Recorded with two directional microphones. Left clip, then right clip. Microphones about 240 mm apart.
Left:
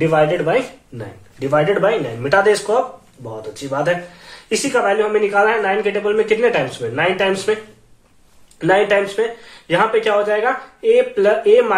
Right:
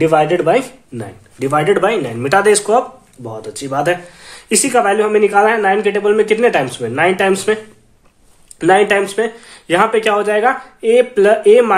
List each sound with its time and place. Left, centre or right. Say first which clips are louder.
0.0 s speech: right 3 dB; right
8.5 s speech: right 3 dB; right